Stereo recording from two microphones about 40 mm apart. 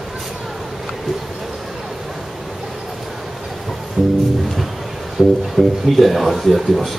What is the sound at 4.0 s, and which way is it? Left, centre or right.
Music, right.